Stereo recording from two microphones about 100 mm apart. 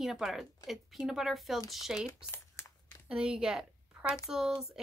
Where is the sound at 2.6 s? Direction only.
25° left (ahead or behind).